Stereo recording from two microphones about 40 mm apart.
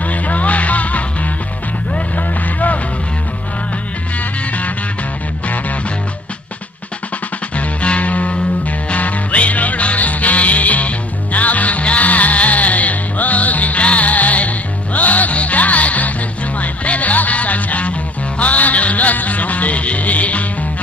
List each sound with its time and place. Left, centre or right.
0.0 s music: left
7.5 s music: left